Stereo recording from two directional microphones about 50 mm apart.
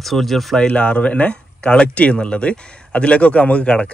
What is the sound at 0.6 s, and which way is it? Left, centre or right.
Speech, left.